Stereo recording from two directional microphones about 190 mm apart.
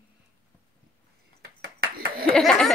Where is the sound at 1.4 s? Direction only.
55° right (ahead or behind).